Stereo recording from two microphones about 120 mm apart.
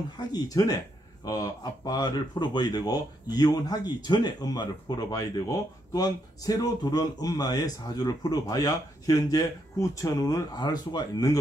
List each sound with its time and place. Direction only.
0.3 s speech: 30° left (ahead or behind)